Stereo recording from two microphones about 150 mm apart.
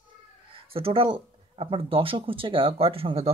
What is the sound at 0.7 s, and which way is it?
Speech, 40° right (ahead or behind).